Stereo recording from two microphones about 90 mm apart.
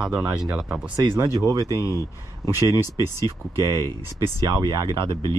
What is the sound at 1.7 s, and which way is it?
Speech, 40° left (ahead or behind).